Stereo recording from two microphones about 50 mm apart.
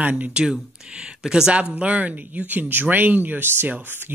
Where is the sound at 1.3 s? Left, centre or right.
Centre.